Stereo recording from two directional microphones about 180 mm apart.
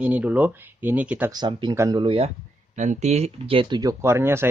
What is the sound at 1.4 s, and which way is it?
Speech, 25° right (ahead or behind).